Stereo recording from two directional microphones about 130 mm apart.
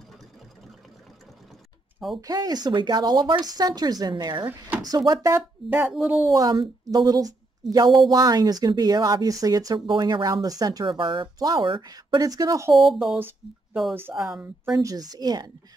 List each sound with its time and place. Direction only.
2.2 s speech: 30° right (ahead or behind)
4.5 s speech: 15° right (ahead or behind)
4.8 s speech: 30° right (ahead or behind)
5.7 s speech: 15° right (ahead or behind)
6.3 s a woman's voice: 30° right (ahead or behind)
11.3 s speech: 30° right (ahead or behind)
12.7 s speech: centre (ahead or behind)
14.8 s speech: 25° right (ahead or behind)